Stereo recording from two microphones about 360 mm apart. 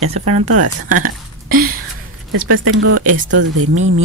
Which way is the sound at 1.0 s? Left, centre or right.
Right.